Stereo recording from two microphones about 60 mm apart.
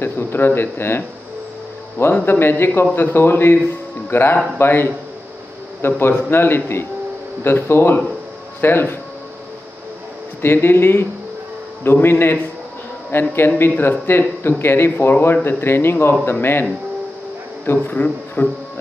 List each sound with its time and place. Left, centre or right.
0.0 s speech: left
2.2 s speech: left
10.4 s speech: left
17.9 s speech: left